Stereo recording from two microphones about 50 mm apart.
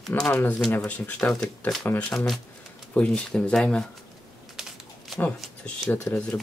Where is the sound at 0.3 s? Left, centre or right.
Left.